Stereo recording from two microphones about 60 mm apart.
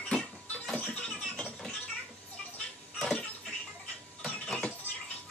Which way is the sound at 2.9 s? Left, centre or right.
Centre.